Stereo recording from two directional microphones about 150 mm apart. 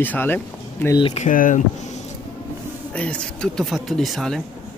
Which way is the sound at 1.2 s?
60° left (ahead or behind).